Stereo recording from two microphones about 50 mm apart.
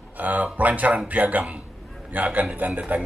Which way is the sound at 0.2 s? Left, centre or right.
Right.